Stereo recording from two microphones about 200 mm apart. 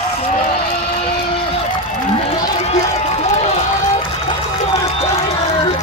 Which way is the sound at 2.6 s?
35° left (ahead or behind).